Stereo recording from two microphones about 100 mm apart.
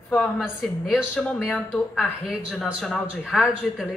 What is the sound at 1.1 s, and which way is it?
A woman's voice, 10° left (ahead or behind).